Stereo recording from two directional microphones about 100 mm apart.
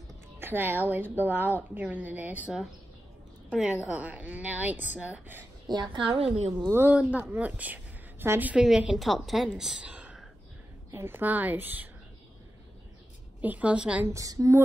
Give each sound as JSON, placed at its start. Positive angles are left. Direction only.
{"t": 0.4, "sound": "a woman's voice", "side_deg": -20}
{"t": 5.7, "sound": "a woman's voice", "side_deg": -55}
{"t": 6.7, "sound": "a woman's voice", "side_deg": -20}
{"t": 8.6, "sound": "a woman's voice", "side_deg": -5}
{"t": 10.9, "sound": "a woman's voice", "side_deg": -25}
{"t": 13.4, "sound": "a woman's voice", "side_deg": -15}
{"t": 14.0, "sound": "a woman's voice", "side_deg": -35}